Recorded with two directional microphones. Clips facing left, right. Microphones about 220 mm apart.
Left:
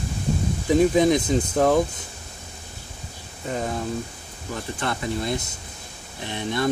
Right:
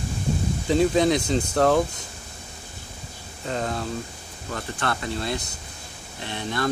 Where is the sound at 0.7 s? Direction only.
15° left (ahead or behind).